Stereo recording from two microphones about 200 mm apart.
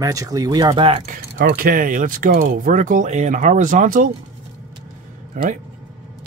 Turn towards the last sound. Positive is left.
turn(degrees=-40)  # may be behind; listen again after turning